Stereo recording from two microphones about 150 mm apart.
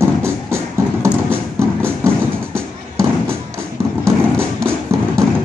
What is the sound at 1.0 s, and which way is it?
Music, 15° right (ahead or behind).